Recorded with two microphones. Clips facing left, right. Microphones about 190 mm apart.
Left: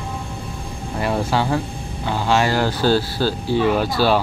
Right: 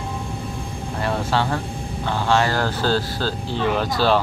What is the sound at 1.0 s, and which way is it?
Speech, 10° left (ahead or behind).